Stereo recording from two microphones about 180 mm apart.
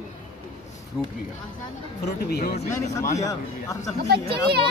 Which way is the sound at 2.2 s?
60° left (ahead or behind).